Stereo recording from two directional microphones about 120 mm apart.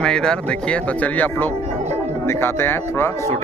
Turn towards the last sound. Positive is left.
turn(degrees=20)  # may be behind; listen again after turning